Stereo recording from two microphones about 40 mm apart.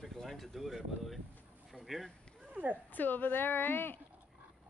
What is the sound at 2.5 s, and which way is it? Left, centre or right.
Speech, right.